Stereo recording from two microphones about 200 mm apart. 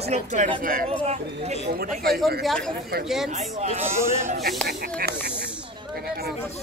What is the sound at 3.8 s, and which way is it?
Speech, 15° right (ahead or behind).